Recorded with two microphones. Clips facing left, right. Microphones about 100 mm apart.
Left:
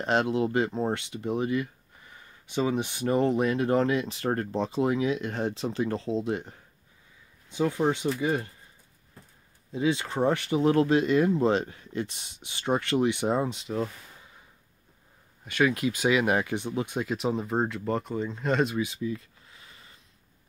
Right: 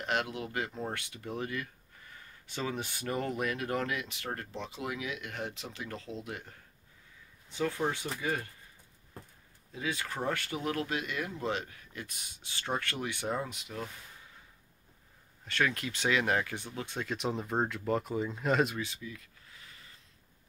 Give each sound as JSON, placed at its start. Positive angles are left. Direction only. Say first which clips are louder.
{"t": 0.0, "sound": "speech", "louder": "left 9 dB", "side_deg": 30}
{"t": 9.7, "sound": "speech", "louder": "left 9 dB", "side_deg": 25}
{"t": 15.4, "sound": "speech", "louder": "left 7 dB", "side_deg": 10}
{"t": 19.0, "sound": "a sound", "louder": "left 13 dB", "side_deg": 25}